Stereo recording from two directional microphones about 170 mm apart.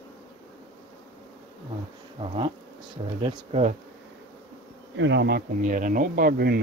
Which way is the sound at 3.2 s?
40° right (ahead or behind).